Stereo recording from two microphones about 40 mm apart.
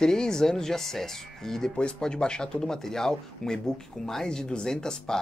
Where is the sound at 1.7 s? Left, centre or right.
Left.